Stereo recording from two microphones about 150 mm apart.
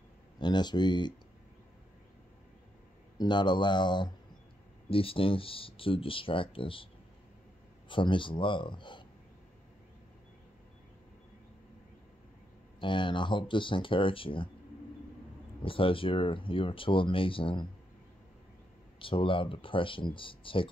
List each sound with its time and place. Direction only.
0.4 s speech: 30° left (ahead or behind)
3.2 s speech: 30° left (ahead or behind)
7.9 s speech: 35° left (ahead or behind)
12.8 s speech: 30° left (ahead or behind)
15.6 s speech: 35° left (ahead or behind)
18.9 s speech: 35° left (ahead or behind)